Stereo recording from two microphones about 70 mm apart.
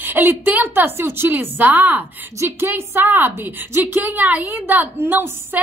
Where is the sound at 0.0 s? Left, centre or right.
Right.